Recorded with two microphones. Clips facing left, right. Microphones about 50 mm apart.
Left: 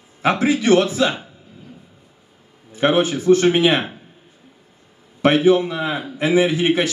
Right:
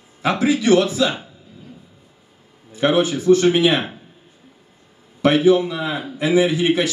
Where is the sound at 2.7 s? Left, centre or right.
Left.